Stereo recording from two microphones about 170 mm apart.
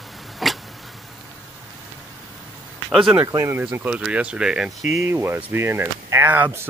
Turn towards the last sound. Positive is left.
turn(degrees=-10)  # may be behind; listen again after turning